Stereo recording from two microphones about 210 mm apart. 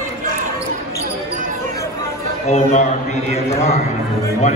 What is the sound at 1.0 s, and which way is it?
Basketball bounce, 40° right (ahead or behind).